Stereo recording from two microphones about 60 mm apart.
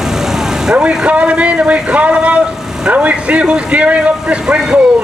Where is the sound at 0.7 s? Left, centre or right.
Centre.